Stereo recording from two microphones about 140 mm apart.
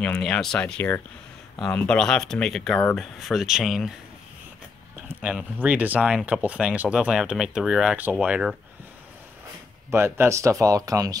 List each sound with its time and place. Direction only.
0.0 s speech: 5° left (ahead or behind)
5.0 s speech: 10° right (ahead or behind)
9.8 s speech: 15° right (ahead or behind)